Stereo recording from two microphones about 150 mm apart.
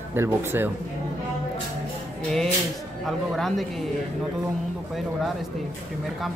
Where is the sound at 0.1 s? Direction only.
15° right (ahead or behind).